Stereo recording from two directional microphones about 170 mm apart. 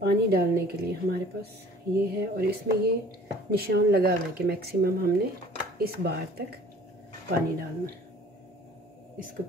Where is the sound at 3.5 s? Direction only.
65° right (ahead or behind).